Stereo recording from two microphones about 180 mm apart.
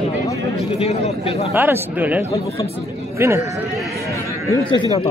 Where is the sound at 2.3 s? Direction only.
15° left (ahead or behind).